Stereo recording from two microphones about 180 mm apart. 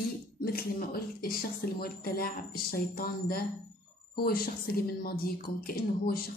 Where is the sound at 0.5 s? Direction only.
55° left (ahead or behind).